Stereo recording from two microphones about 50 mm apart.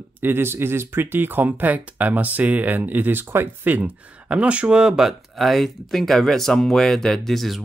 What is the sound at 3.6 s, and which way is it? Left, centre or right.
Speech, right.